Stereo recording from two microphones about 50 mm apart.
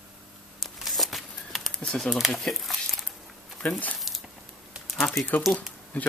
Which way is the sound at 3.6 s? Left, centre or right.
Left.